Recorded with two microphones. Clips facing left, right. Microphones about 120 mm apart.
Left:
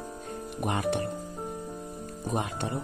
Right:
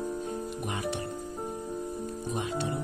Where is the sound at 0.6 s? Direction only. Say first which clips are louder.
Left 10 dB; 55° left (ahead or behind).